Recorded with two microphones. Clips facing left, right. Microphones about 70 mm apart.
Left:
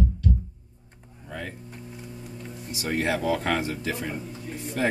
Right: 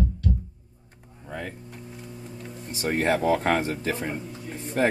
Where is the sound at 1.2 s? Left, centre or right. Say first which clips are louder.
Right 1 dB; centre.